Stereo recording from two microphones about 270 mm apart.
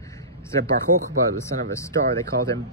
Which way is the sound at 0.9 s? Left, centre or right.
Right.